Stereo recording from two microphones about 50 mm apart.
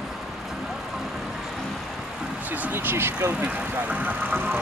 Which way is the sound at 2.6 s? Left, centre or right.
Right.